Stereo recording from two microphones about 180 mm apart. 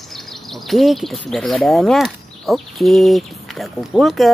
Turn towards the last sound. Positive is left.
turn(degrees=0)  # may be behind; listen again after turning